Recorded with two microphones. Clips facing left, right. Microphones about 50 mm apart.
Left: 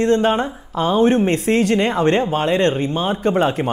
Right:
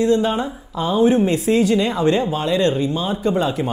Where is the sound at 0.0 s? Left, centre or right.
Left.